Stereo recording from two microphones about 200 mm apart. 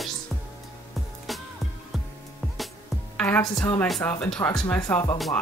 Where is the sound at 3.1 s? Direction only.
5° left (ahead or behind).